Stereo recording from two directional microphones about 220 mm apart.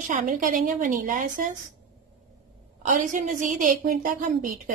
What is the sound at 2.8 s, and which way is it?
A woman's voice, 35° right (ahead or behind).